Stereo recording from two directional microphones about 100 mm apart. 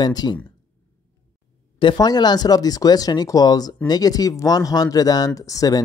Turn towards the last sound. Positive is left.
turn(degrees=40)  # may be behind; listen again after turning